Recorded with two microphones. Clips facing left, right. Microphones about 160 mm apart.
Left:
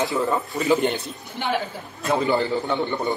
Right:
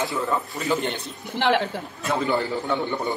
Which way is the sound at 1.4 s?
75° right (ahead or behind).